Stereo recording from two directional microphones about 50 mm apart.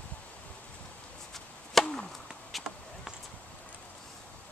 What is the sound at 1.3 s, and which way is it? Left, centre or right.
Chop, centre.